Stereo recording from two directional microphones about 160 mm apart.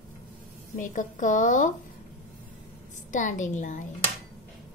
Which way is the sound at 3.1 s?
50° left (ahead or behind).